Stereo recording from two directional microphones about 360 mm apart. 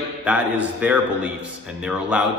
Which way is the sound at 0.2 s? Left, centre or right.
Centre.